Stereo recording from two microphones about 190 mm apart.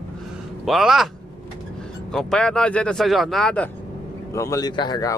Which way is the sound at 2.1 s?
5° left (ahead or behind).